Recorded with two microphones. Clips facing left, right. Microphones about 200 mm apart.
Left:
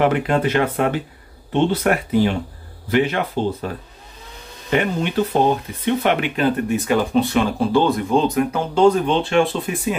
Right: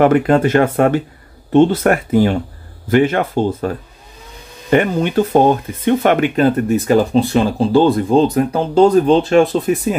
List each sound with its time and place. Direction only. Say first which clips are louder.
0.0 s speech: right 6 dB; 45° right (ahead or behind)